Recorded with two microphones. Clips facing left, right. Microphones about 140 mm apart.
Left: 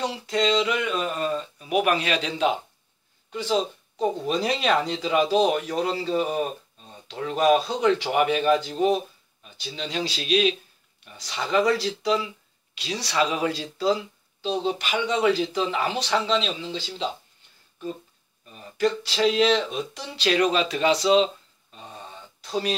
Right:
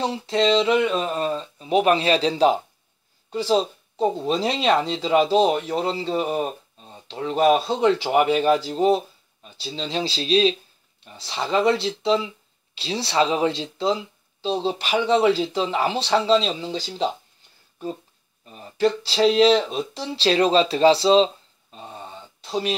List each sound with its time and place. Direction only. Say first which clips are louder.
0.0 s speech: right 3 dB; 30° right (ahead or behind)
18.5 s speech: right 3 dB; 30° right (ahead or behind)
21.7 s a sound: right 3 dB; 30° right (ahead or behind)